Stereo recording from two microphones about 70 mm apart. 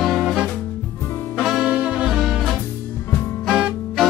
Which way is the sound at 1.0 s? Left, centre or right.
Left.